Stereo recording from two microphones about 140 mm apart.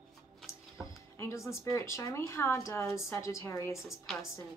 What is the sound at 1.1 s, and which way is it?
Speech, 20° left (ahead or behind).